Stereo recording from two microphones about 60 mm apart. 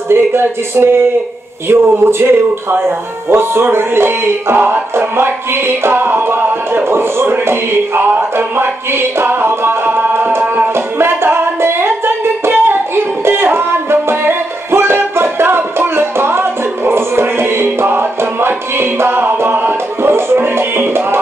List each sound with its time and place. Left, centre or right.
0.1 s speech: right
1.7 s music: right